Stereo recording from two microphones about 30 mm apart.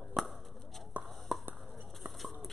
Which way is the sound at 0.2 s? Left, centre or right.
Centre.